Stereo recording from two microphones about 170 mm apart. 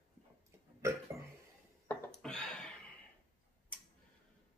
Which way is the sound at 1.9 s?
5° left (ahead or behind).